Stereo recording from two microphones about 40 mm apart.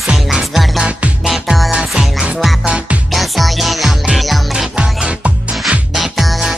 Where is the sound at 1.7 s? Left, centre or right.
Centre.